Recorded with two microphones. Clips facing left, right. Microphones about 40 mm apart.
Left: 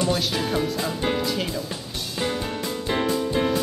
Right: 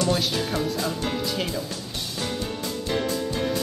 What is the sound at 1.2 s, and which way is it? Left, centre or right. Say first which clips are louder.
Speech: left 1 dB; centre.